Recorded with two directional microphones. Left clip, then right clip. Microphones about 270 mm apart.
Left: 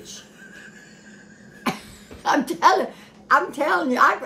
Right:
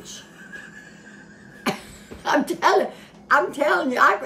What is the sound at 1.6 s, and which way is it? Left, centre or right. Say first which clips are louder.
Cough: right 1 dB; centre.